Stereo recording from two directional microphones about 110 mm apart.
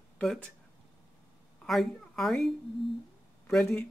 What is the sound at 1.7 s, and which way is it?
Speech, centre (ahead or behind).